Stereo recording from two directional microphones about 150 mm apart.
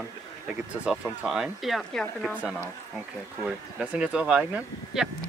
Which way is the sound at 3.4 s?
5° right (ahead or behind).